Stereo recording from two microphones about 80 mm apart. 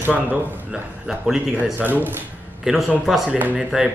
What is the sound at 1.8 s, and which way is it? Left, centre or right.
Speech, right.